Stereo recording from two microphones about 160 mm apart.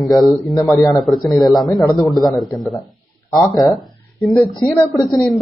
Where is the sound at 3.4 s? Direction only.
Centre (ahead or behind).